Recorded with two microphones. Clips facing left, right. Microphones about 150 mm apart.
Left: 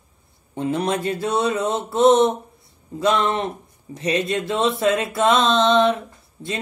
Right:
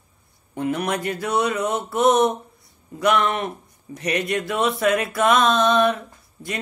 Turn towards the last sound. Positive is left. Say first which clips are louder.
# left 2 dB
turn(degrees=25)  # may be behind; listen again after turning